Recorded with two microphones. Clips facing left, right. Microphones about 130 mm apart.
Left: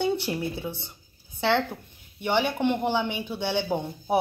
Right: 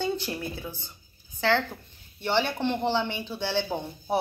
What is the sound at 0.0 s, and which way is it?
A woman's voice, 20° left (ahead or behind).